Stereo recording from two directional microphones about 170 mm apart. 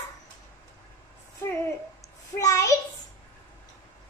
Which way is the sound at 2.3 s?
20° left (ahead or behind).